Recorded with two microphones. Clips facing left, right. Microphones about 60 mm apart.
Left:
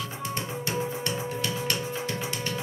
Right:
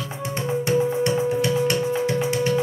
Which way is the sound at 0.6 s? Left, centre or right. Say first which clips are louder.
Right 11 dB; right.